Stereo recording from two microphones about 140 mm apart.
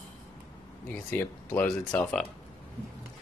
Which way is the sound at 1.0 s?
10° left (ahead or behind).